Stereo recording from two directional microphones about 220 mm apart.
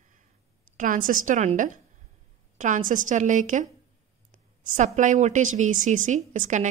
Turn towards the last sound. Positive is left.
turn(degrees=-35)  # may be behind; listen again after turning